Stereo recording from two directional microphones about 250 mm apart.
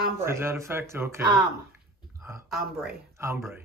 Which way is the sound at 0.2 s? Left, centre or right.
Centre.